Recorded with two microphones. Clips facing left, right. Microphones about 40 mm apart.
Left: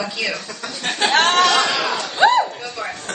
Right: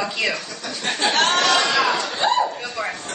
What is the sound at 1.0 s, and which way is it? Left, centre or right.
Speech, left.